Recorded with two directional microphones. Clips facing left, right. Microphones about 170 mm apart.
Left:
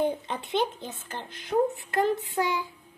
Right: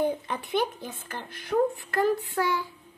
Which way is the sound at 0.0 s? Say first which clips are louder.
Even; 25° left (ahead or behind).